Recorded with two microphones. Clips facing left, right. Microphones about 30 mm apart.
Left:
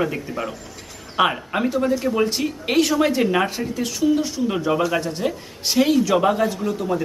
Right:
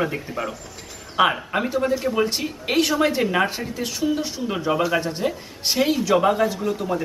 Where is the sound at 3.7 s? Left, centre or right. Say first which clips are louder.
Left 4 dB; centre.